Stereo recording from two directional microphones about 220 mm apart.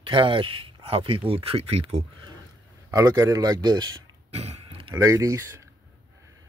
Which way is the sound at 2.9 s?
15° right (ahead or behind).